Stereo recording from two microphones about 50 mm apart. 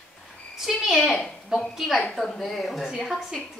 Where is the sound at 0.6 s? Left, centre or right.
Centre.